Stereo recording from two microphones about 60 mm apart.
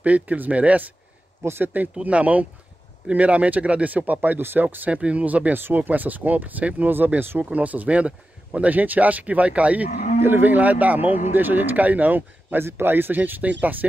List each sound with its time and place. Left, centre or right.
0.0 s speech: right
1.4 s speech: right
2.0 s speech: right
10.2 s speech: right